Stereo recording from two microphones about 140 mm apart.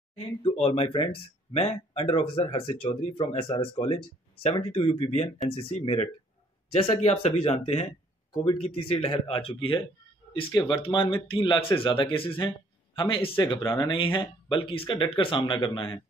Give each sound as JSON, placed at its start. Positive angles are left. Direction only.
{"t": 0.4, "sound": "speech", "side_deg": 45}